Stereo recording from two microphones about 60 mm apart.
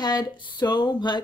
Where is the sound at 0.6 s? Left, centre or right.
Left.